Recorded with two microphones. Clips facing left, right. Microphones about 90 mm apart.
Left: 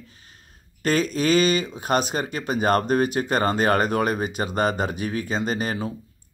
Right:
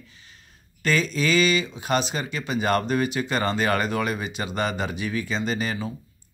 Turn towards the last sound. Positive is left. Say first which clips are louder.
# left 2 dB
turn(degrees=45)  # may be behind; listen again after turning